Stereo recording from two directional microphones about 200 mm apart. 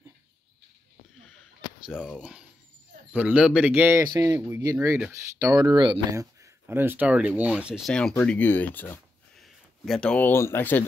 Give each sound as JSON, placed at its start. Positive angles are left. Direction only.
{"t": 1.9, "sound": "speech", "side_deg": 5}